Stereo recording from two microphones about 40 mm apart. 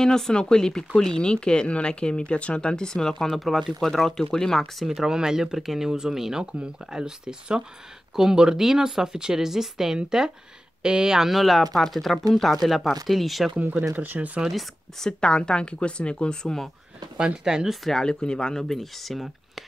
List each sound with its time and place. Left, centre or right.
0.0 s speech: centre
3.3 s speech: centre
4.2 s speech: centre
4.7 s speech: centre
11.2 s speech: centre
13.9 s speech: right
15.0 s speech: centre
16.4 s speech: centre
17.5 s speech: centre
17.8 s speech: centre